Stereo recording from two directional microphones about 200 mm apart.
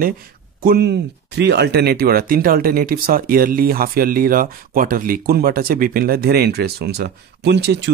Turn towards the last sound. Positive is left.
turn(degrees=-60)  # may be behind; listen again after turning